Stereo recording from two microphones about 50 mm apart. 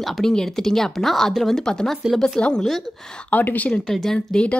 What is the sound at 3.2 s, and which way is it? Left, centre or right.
Speech, left.